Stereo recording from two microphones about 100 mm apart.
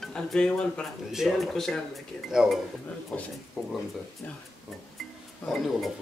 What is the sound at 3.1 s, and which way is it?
Speech, 5° left (ahead or behind).